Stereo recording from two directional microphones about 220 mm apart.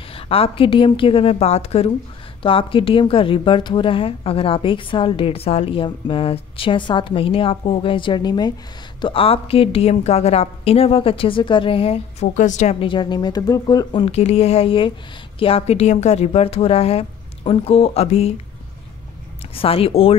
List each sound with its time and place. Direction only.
0.1 s a woman's voice: 25° left (ahead or behind)
19.5 s a woman's voice: 25° left (ahead or behind)